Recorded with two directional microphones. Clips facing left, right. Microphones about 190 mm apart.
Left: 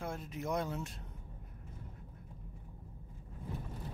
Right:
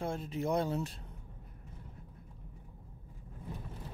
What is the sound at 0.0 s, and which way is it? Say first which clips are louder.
Speech: right 5 dB; 30° right (ahead or behind).